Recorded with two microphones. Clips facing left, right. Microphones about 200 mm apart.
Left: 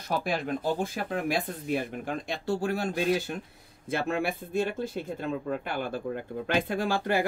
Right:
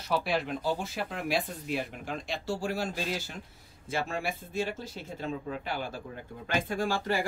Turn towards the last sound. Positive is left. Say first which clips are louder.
# left 3 dB
turn(degrees=60)  # may be behind; listen again after turning